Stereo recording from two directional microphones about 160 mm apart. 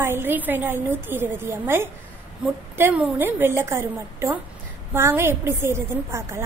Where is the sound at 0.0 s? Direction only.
15° right (ahead or behind).